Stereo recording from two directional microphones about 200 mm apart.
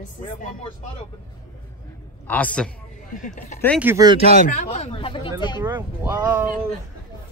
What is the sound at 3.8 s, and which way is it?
Speech, 10° right (ahead or behind).